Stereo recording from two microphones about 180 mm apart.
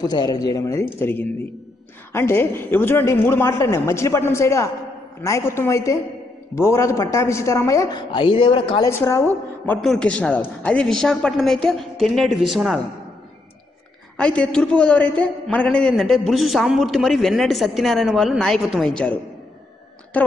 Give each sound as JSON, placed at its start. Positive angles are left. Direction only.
{"t": 0.0, "sound": "a man's voice", "side_deg": 20}
{"t": 8.9, "sound": "a man's voice", "side_deg": 15}
{"t": 14.1, "sound": "a man's voice", "side_deg": 5}
{"t": 20.1, "sound": "a man's voice", "side_deg": 10}